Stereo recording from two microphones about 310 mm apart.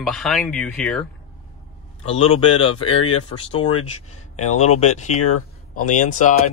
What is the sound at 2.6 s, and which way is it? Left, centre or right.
Speech, centre.